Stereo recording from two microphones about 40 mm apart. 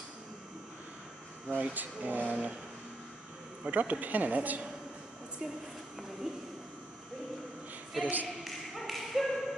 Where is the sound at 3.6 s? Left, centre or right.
Right.